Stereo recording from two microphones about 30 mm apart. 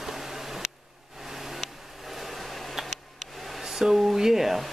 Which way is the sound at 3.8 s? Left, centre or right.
Centre.